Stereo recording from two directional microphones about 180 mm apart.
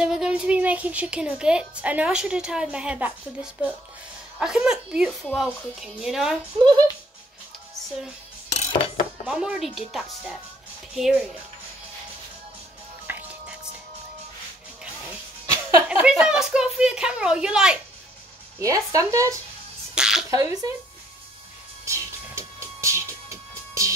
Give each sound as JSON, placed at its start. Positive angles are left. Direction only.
{"t": 0.0, "sound": "speech", "side_deg": -5}
{"t": 4.4, "sound": "speech", "side_deg": -5}
{"t": 8.5, "sound": "a sound", "side_deg": 40}
{"t": 9.3, "sound": "speech", "side_deg": -5}
{"t": 13.1, "sound": "music", "side_deg": -10}
{"t": 15.0, "sound": "speech", "side_deg": -10}
{"t": 18.6, "sound": "speech", "side_deg": -20}
{"t": 20.0, "sound": "sneeze", "side_deg": -5}
{"t": 20.2, "sound": "speech", "side_deg": -20}
{"t": 21.8, "sound": "music", "side_deg": -15}